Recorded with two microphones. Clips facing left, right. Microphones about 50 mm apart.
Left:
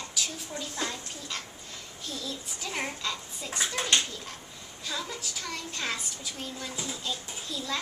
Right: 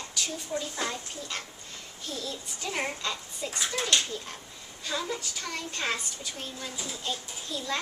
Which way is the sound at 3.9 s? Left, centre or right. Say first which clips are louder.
Left 1 dB; left.